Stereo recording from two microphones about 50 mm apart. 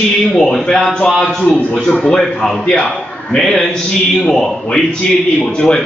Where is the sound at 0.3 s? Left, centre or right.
Centre.